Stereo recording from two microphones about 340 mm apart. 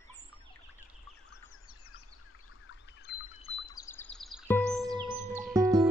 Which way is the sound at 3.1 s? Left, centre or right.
Left.